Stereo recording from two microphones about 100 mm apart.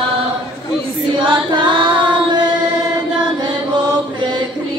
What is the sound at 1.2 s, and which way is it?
Choir, 55° right (ahead or behind).